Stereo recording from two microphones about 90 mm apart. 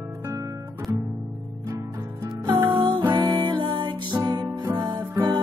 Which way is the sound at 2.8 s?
60° right (ahead or behind).